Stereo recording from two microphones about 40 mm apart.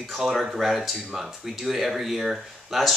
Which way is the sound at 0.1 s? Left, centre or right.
Centre.